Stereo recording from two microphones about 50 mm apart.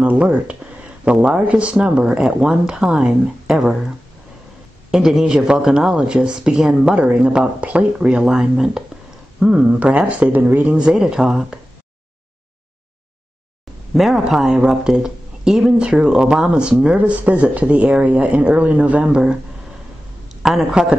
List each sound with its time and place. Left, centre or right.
0.0 s speech: right
1.1 s speech: centre
4.9 s speech: centre
7.0 s speech: right
10.8 s speech: centre
13.9 s speech: centre; by 19.2 s right
20.8 s speech: centre